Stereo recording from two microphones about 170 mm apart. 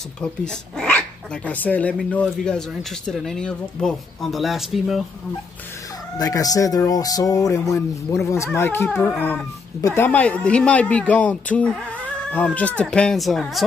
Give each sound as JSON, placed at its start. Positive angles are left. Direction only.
{"t": 0.2, "sound": "speech", "side_deg": 5}
{"t": 6.1, "sound": "speech", "side_deg": 20}